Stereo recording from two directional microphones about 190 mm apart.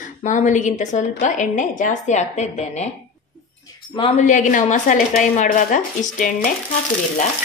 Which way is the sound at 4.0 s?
40° left (ahead or behind).